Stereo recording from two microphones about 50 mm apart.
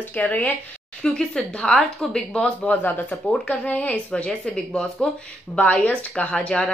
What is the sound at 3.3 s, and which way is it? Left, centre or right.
Speech, left.